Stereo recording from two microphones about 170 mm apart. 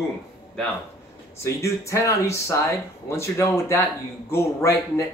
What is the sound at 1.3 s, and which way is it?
Speech, 15° left (ahead or behind).